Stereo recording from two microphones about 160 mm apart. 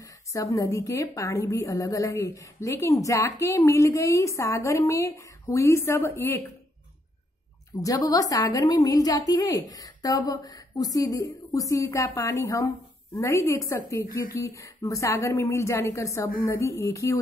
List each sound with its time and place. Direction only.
0.3 s a woman's voice: 20° left (ahead or behind)
7.8 s a woman's voice: 20° left (ahead or behind)